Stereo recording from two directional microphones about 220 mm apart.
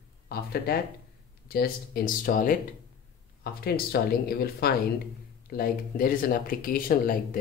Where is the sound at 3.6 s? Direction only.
45° left (ahead or behind).